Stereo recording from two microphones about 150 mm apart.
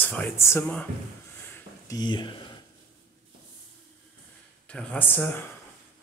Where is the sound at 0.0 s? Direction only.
10° left (ahead or behind).